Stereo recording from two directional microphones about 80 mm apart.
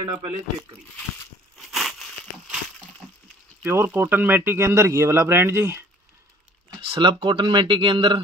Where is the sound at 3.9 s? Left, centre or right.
Right.